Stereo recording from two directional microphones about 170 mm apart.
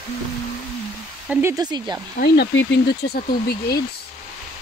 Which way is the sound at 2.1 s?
70° left (ahead or behind).